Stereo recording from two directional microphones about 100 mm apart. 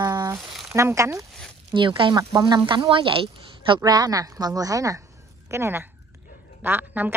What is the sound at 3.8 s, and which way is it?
Speech, 40° right (ahead or behind).